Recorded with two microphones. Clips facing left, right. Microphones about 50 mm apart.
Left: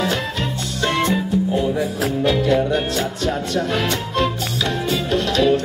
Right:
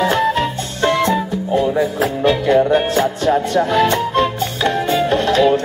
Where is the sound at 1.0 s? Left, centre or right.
Right.